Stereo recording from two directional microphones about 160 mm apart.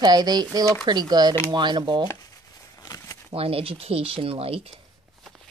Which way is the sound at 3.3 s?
35° right (ahead or behind).